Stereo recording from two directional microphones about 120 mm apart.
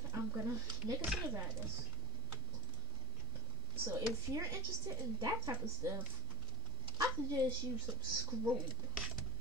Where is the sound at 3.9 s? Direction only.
25° right (ahead or behind).